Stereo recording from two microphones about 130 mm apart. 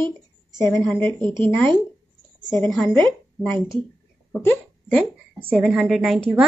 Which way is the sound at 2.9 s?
15° left (ahead or behind).